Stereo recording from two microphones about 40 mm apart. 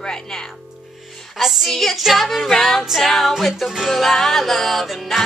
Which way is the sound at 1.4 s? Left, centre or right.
Centre.